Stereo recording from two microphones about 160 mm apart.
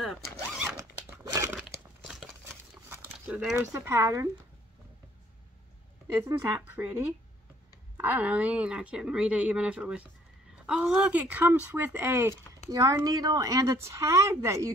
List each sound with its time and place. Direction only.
0.0 s zipper: centre (ahead or behind)
0.7 s crumpling: 15° right (ahead or behind)
2.7 s dog: 10° right (ahead or behind)
3.7 s a woman's voice: 20° right (ahead or behind)
6.2 s speech: 15° right (ahead or behind)
8.0 s a woman's voice: 10° right (ahead or behind)